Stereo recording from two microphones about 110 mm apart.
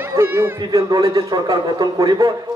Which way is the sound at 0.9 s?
35° right (ahead or behind).